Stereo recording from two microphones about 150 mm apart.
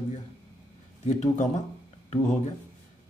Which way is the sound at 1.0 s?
50° left (ahead or behind).